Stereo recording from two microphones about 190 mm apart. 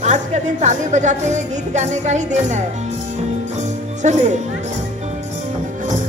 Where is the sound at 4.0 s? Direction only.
35° right (ahead or behind).